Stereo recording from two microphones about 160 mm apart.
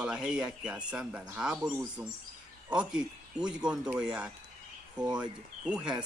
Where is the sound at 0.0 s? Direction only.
5° right (ahead or behind).